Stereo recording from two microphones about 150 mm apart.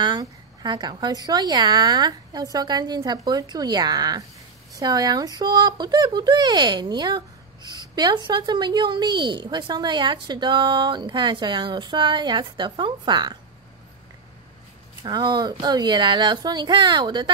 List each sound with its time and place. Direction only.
0.0 s a woman's voice: 30° right (ahead or behind)
15.0 s a woman's voice: 30° right (ahead or behind)